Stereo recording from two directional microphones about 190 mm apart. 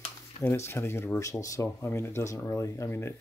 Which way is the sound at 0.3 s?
35° left (ahead or behind).